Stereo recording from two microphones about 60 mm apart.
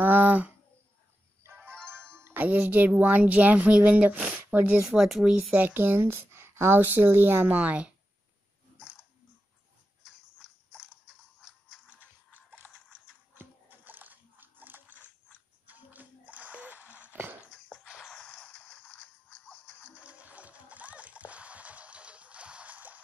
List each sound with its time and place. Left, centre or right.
0.0 s a sound: right
2.3 s speech: right
4.8 s speech: centre
5.3 s speech: right
12.3 s biting: left
13.3 s biting: right
15.6 s music: right
17.1 s a sound: right
18.1 s a sound: centre
18.5 s whip: left
20.0 s music: right